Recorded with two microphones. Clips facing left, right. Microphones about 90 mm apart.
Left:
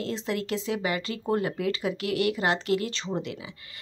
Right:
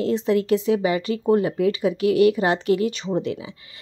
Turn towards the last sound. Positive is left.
turn(degrees=-20)  # may be behind; listen again after turning